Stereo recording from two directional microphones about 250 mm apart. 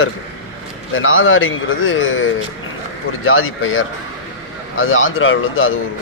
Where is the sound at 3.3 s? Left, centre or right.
Left.